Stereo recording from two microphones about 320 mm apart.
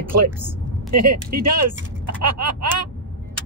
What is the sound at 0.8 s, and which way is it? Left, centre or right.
Speech, right.